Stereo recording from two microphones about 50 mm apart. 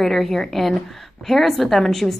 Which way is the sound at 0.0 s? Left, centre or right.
Centre.